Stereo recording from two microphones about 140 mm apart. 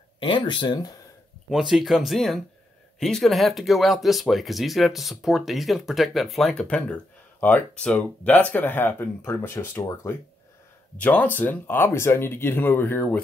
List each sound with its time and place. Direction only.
0.2 s speech: 35° left (ahead or behind)
1.5 s speech: 5° right (ahead or behind); by 13.2 s 15° left (ahead or behind)